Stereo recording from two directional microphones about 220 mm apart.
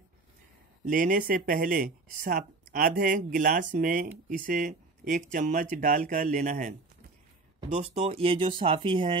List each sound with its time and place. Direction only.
0.8 s speech: 40° right (ahead or behind)
7.7 s speech: 30° right (ahead or behind)